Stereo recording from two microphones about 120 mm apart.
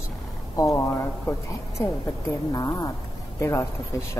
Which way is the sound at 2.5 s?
30° left (ahead or behind).